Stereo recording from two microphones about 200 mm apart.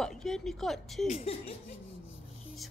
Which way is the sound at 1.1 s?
30° left (ahead or behind).